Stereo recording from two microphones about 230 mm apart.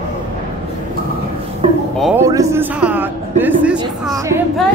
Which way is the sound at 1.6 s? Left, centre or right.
Right.